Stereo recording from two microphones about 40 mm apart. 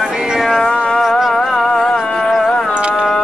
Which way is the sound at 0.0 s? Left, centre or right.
Centre.